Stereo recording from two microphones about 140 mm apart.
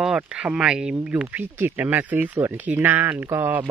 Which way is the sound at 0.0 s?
5° right (ahead or behind).